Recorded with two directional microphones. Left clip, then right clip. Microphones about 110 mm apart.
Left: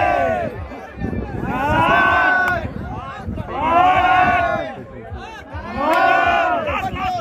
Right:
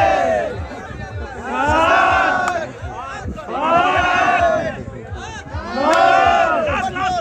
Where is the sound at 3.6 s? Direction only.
10° right (ahead or behind).